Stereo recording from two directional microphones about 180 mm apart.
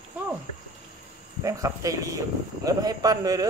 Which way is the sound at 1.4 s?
20° right (ahead or behind).